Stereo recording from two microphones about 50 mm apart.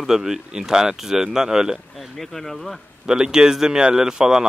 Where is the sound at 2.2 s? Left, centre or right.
Centre.